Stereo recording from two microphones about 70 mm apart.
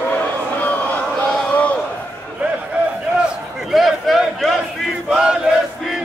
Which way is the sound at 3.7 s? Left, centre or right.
Centre.